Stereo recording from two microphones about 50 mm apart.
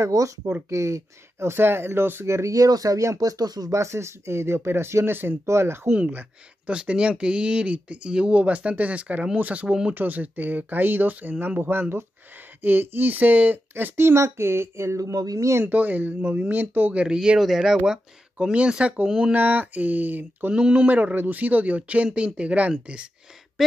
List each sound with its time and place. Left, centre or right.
0.7 s speech: right
2.2 s speech: right
3.7 s speech: right
5.5 s speech: right
5.9 s speech: right
13.9 s speech: right
15.6 s speech: right
16.9 s speech: centre
17.4 s speech: centre; by 19.0 s right
19.0 s speech: centre
19.3 s speech: right